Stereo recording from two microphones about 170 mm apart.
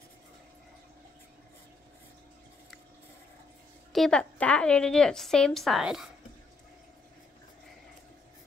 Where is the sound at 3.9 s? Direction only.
5° left (ahead or behind).